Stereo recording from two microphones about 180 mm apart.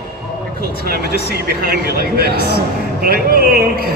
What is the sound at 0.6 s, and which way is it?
A man's voice, 60° right (ahead or behind).